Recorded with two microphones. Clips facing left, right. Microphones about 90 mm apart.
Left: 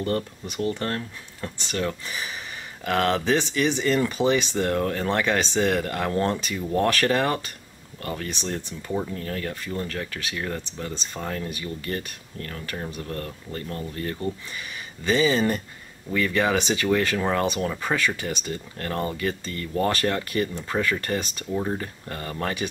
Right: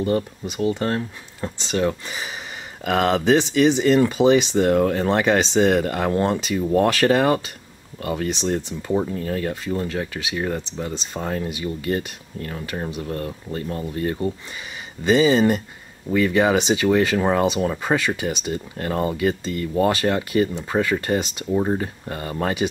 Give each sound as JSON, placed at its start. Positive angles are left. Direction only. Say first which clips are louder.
{"t": 0.0, "sound": "speech", "louder": "right 5 dB", "side_deg": -15}